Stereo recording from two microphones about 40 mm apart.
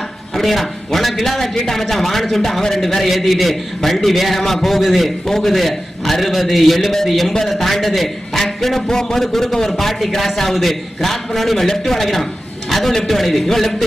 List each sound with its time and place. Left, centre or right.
0.4 s a man's voice: centre